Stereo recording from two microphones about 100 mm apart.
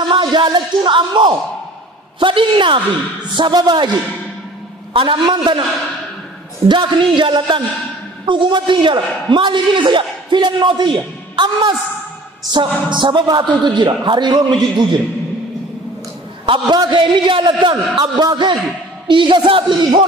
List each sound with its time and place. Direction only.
0.1 s a man's voice: 50° right (ahead or behind)
4.9 s a man's voice: 50° right (ahead or behind)
6.7 s a man's voice: 50° right (ahead or behind)
16.4 s a man's voice: 55° right (ahead or behind)